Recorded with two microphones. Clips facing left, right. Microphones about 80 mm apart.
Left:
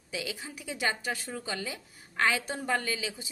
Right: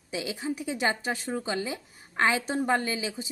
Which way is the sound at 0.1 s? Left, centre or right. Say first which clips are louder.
Right 6 dB; right.